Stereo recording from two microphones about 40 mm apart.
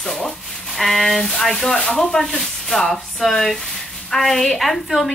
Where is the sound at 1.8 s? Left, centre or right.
Left.